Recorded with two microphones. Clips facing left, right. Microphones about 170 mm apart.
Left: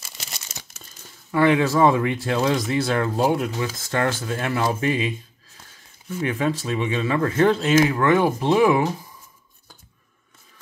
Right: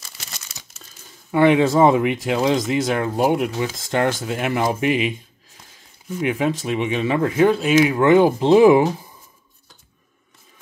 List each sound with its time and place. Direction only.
0.5 s crumpling: 45° left (ahead or behind)
1.3 s speech: 20° right (ahead or behind)
7.9 s speech: 20° right (ahead or behind)